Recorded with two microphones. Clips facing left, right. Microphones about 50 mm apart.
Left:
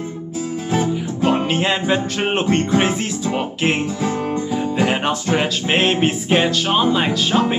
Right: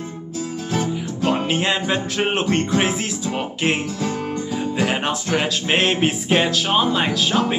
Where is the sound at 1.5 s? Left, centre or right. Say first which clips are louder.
Left 2 dB; centre.